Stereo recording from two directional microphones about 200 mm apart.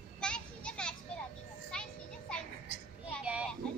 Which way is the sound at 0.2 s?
5° left (ahead or behind).